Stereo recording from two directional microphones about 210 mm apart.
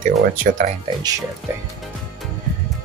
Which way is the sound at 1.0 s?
15° right (ahead or behind).